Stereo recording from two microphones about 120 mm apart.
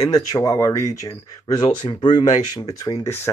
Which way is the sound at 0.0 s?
30° left (ahead or behind).